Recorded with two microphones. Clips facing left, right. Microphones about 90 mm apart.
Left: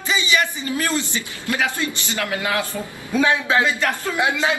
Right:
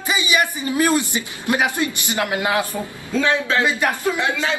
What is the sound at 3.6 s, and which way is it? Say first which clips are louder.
Speech: right 2 dB; 15° right (ahead or behind).